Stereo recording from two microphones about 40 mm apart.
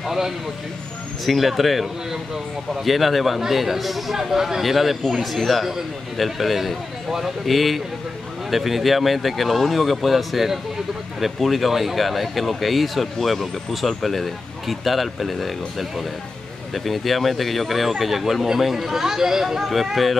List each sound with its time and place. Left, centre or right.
0.0 s speech: centre